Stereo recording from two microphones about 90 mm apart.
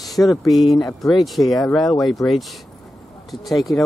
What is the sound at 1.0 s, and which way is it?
Speech, centre (ahead or behind).